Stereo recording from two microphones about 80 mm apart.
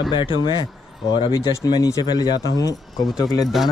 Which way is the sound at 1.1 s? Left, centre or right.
Left.